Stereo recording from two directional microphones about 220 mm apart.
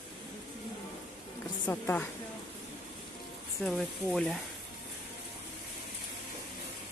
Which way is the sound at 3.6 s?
Centre (ahead or behind).